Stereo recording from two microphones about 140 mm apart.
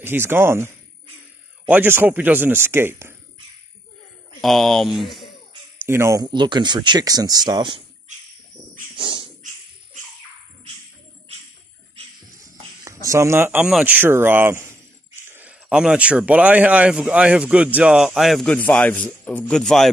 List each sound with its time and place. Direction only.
0.0 s speech: 15° right (ahead or behind)
1.7 s speech: 15° right (ahead or behind)
4.4 s speech: centre (ahead or behind)
5.8 s speech: 20° right (ahead or behind)
6.3 s speech: 35° right (ahead or behind)
8.9 s a sound: 40° right (ahead or behind)
13.0 s speech: 20° right (ahead or behind); by 19.9 s 5° left (ahead or behind)